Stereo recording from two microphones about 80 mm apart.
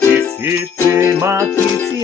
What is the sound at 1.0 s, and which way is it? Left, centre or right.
Music, right.